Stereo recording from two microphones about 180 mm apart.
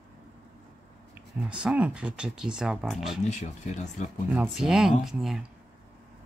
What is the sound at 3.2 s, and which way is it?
Speech, 40° left (ahead or behind).